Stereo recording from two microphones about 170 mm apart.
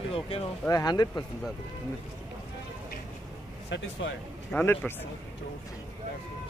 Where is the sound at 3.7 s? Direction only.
90° left.